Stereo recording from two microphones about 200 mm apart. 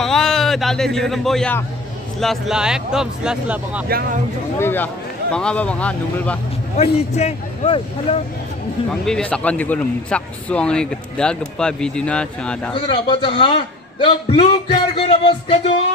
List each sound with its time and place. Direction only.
0.0 s speech: centre (ahead or behind)
4.6 s speech: 10° left (ahead or behind)
6.8 s a man's voice: 35° left (ahead or behind)
9.0 s speech: 5° left (ahead or behind)
12.7 s speech: 25° left (ahead or behind)